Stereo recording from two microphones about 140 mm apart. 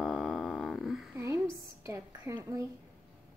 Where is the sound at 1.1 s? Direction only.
20° right (ahead or behind).